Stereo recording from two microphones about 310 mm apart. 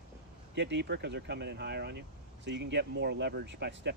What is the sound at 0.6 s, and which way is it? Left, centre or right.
Speech, right.